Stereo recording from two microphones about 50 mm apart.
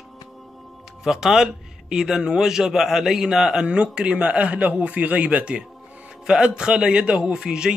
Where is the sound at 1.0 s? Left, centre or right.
Centre.